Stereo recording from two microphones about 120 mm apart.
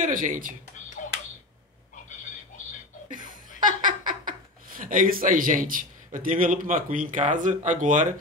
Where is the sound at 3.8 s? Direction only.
90° right.